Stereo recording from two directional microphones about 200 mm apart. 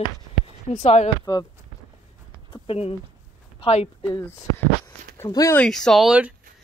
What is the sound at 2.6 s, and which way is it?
Speech, 30° left (ahead or behind).